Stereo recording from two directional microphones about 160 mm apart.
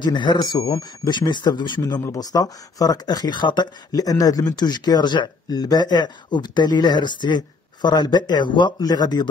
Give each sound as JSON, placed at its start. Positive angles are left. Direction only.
{"t": 0.0, "sound": "speech", "side_deg": 30}